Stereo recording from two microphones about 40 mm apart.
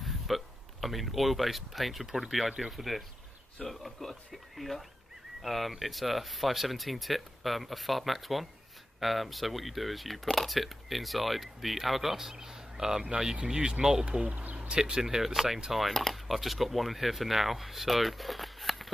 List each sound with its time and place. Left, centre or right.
0.0 s speech: centre
14.2 s a sound: right
14.7 s speech: centre
15.9 s speech: centre
16.3 s speech: centre